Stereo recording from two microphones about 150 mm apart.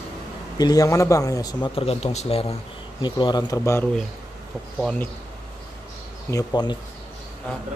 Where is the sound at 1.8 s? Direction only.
45° left (ahead or behind).